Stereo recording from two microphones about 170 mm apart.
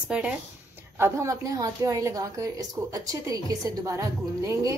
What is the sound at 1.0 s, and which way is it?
A woman's voice, 15° right (ahead or behind).